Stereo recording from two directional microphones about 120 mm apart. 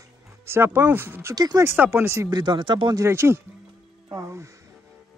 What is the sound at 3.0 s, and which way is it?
Speech, 20° right (ahead or behind).